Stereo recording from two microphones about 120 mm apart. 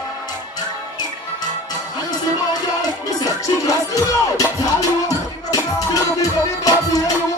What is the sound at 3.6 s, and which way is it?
Music, 30° left (ahead or behind).